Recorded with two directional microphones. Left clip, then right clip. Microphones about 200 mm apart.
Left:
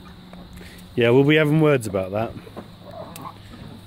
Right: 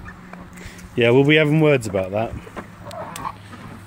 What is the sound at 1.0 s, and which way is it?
Speech, 5° left (ahead or behind).